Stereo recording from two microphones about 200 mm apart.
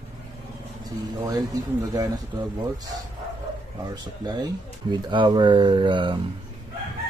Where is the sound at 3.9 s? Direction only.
20° right (ahead or behind).